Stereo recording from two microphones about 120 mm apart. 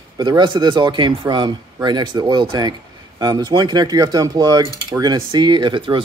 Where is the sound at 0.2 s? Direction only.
40° right (ahead or behind).